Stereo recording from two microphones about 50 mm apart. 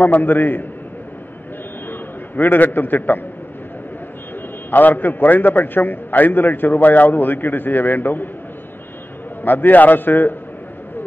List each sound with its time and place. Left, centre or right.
0.0 s a man's voice: left
1.9 s a man's voice: left
4.6 s a man's voice: left
9.4 s a man's voice: left